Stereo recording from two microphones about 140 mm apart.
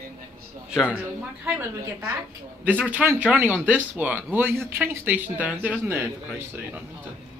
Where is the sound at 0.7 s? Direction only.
5° right (ahead or behind).